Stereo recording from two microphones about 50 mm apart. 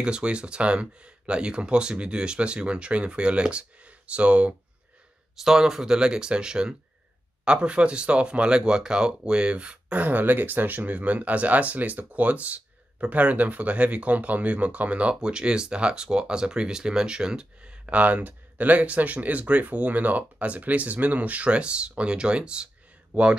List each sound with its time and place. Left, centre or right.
0.0 s speech: centre
5.3 s speech: centre; by 23.3 s right